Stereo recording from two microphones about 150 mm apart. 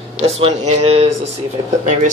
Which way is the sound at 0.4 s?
45° right (ahead or behind).